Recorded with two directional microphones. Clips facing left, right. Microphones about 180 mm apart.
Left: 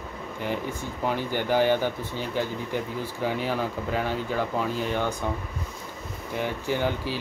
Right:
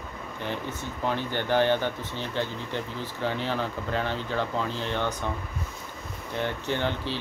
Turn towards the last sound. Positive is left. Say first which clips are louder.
# left 2 dB
turn(degrees=10)  # may be behind; listen again after turning